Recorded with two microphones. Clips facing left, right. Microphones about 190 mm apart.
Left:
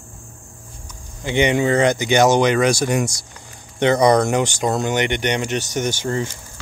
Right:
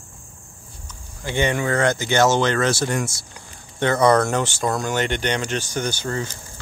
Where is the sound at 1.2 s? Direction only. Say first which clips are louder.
Left 4 dB; 20° left (ahead or behind).